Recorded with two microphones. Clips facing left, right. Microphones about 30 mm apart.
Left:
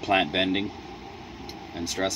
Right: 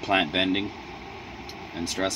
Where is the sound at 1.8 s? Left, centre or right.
Centre.